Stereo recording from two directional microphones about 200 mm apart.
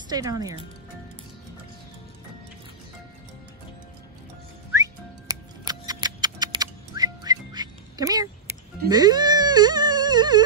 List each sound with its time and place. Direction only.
0.1 s speech: 20° right (ahead or behind)
5.3 s music: 20° right (ahead or behind)